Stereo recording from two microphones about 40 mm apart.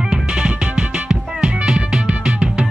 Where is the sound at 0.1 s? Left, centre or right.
Right.